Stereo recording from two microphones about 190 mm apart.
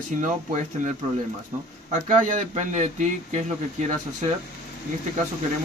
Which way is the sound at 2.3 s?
40° right (ahead or behind).